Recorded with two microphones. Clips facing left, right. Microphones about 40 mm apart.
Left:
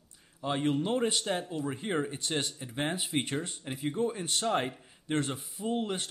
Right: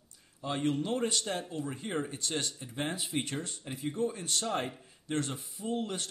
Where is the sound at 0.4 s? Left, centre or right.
Centre.